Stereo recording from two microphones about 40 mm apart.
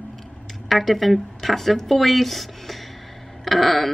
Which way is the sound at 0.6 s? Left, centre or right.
Centre.